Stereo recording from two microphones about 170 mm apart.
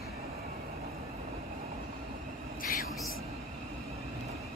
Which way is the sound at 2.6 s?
55° left (ahead or behind).